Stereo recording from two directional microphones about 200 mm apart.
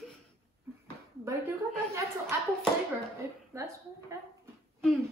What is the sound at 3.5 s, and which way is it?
Speech, 15° right (ahead or behind).